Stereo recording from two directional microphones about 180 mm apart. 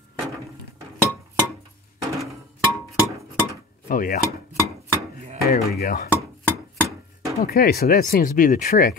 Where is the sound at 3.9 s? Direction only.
50° left (ahead or behind).